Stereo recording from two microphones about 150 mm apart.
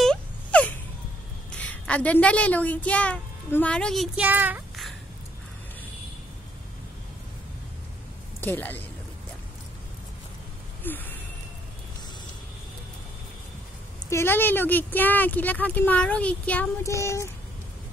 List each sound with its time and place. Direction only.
0.0 s wail: 5° left (ahead or behind)
1.6 s a woman's voice: 10° left (ahead or behind)
4.2 s a child's voice: 10° right (ahead or behind)
8.4 s speech: 15° left (ahead or behind)
10.8 s a sound: 10° left (ahead or behind)
14.1 s speech: 15° left (ahead or behind)
16.8 s speech: 20° left (ahead or behind)